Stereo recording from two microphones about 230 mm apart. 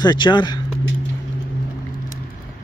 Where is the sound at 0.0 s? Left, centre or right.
Centre.